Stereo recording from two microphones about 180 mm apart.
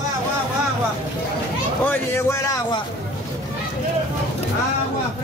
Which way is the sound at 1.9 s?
20° left (ahead or behind).